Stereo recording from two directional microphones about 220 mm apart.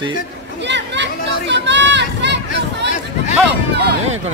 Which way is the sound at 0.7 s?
55° right (ahead or behind).